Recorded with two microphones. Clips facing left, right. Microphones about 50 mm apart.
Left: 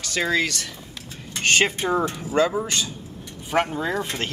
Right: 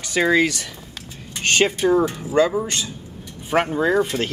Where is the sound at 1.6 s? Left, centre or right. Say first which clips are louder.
Right 4 dB; centre.